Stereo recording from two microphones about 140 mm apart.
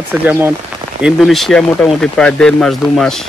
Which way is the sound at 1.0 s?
Centre (ahead or behind).